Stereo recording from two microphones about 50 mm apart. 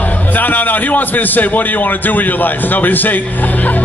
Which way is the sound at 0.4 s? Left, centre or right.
Left.